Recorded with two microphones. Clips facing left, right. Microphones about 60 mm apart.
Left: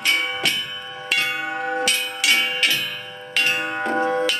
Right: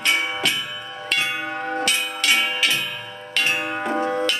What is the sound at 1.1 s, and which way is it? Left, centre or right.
Tubular bells, centre.